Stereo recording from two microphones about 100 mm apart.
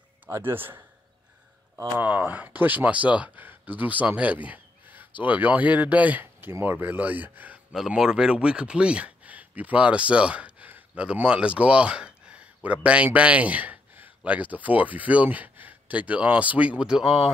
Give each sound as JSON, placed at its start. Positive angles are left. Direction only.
{"t": 0.3, "sound": "a man's voice", "side_deg": -20}
{"t": 2.0, "sound": "speech", "side_deg": -15}
{"t": 7.7, "sound": "speech", "side_deg": -5}